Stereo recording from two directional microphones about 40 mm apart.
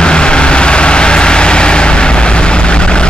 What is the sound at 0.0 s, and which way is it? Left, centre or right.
Vehicle, left.